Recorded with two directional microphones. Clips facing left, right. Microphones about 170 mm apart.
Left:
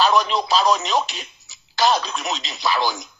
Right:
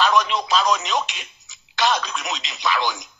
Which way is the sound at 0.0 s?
35° left (ahead or behind).